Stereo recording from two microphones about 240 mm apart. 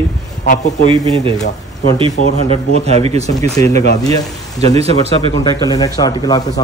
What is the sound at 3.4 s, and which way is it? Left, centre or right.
Speech, centre.